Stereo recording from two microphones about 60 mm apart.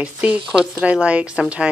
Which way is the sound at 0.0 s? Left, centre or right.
Right.